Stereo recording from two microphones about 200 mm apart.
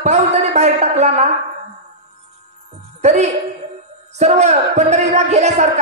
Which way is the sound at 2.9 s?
35° right (ahead or behind).